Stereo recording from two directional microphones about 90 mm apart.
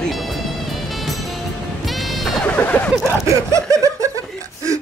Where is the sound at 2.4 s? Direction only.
20° left (ahead or behind).